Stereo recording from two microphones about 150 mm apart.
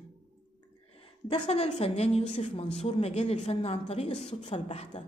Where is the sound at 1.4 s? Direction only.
50° left (ahead or behind).